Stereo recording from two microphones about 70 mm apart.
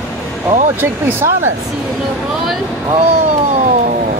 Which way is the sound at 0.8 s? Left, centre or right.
Right.